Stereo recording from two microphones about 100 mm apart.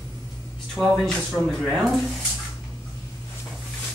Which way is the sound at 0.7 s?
5° left (ahead or behind).